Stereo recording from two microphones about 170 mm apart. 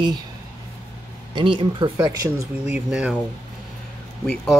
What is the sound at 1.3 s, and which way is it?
Speech, 30° right (ahead or behind).